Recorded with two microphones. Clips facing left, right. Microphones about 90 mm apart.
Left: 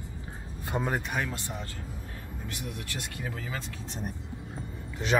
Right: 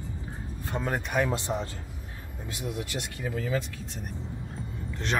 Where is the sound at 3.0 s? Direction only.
Centre (ahead or behind).